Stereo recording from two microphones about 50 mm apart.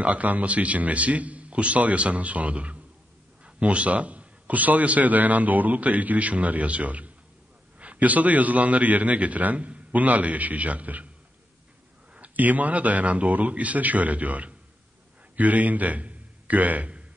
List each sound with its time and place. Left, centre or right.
0.0 s a man's voice: right
12.1 s a man's voice: right